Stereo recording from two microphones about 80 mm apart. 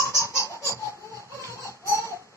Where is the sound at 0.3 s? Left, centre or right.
Left.